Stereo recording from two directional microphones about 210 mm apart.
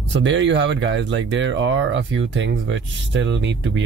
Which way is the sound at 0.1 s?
60° right (ahead or behind).